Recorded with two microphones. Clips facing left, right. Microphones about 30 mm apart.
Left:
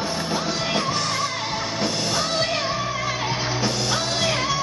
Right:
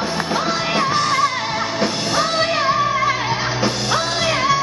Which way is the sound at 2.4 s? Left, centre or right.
Right.